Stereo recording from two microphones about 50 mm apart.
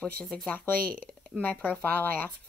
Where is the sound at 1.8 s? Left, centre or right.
Left.